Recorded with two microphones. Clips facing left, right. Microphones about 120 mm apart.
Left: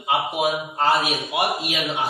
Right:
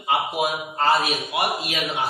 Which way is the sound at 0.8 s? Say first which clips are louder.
Right 2 dB; centre (ahead or behind).